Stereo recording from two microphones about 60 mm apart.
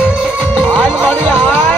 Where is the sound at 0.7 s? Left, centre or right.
Left.